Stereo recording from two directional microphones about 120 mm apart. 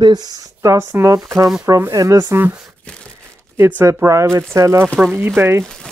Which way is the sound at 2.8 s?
10° left (ahead or behind).